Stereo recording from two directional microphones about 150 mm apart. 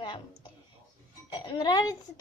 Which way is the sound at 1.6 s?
30° left (ahead or behind).